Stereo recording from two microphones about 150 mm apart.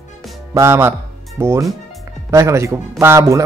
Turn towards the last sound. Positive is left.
turn(degrees=-15)  # may be behind; listen again after turning